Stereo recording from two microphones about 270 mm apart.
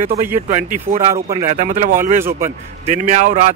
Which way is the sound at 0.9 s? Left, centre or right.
Right.